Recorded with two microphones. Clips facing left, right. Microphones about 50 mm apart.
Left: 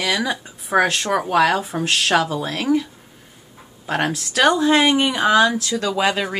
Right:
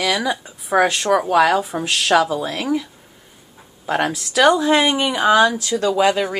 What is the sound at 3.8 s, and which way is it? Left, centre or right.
Speech, centre.